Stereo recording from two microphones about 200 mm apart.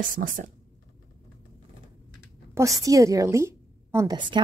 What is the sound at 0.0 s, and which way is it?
Speech, 45° right (ahead or behind).